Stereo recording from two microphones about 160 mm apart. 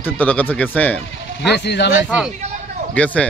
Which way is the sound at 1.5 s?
90° left.